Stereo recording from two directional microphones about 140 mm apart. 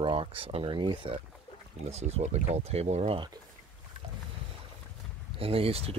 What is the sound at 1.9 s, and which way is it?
Speech, 50° right (ahead or behind).